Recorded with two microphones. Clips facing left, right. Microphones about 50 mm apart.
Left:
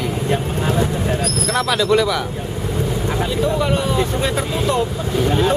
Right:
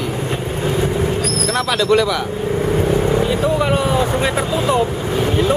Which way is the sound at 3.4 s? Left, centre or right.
Centre.